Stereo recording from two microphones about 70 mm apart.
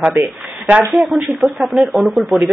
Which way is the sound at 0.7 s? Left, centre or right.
Centre.